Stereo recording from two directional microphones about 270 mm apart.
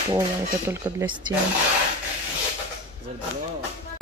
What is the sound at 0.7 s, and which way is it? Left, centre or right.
Speech, centre.